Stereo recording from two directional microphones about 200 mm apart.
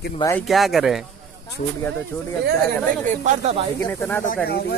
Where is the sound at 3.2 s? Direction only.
30° right (ahead or behind).